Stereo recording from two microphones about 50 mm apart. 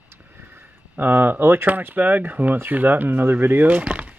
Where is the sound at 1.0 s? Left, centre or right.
Right.